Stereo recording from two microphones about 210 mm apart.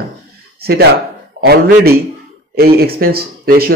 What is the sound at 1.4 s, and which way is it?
Speech, 45° right (ahead or behind).